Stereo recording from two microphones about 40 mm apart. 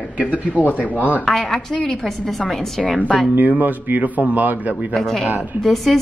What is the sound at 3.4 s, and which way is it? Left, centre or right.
A man's voice, right.